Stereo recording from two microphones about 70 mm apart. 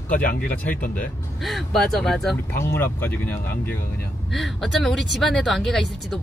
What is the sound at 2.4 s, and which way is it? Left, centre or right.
Speech, left.